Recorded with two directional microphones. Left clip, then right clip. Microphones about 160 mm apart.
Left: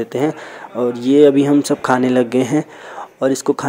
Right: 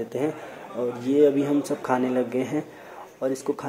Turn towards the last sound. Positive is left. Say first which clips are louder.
# left 10 dB
turn(degrees=40)  # may be behind; listen again after turning